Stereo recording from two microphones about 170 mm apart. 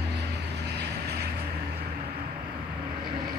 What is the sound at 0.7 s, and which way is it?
Vehicle, 75° right (ahead or behind).